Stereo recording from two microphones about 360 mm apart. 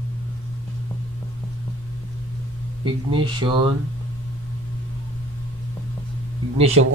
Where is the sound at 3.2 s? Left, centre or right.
Centre.